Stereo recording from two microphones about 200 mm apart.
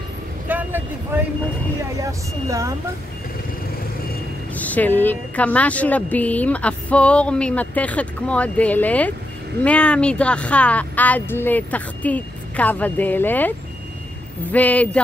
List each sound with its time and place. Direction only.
0.5 s a sound: 10° right (ahead or behind)
2.0 s speech: 15° right (ahead or behind)
4.6 s a woman's voice: 10° left (ahead or behind)